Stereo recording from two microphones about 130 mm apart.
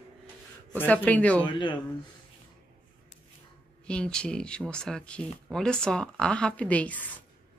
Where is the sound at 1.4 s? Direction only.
35° left (ahead or behind).